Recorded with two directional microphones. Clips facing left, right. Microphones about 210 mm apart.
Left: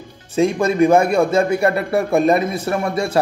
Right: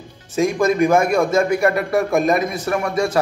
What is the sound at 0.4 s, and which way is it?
A man's voice, 30° left (ahead or behind).